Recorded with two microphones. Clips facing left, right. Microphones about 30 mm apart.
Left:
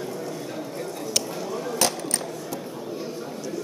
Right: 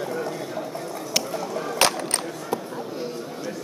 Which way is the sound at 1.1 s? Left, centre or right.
Centre.